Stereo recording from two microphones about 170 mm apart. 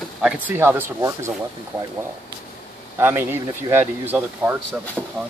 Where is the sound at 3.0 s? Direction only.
15° right (ahead or behind).